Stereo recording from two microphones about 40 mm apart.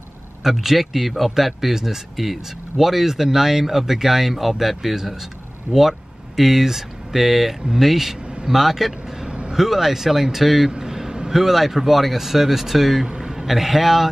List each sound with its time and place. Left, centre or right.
0.4 s a man's voice: centre
9.2 s vehicle: right
9.6 s speech: centre
10.7 s a sound: centre
11.3 s a man's voice: centre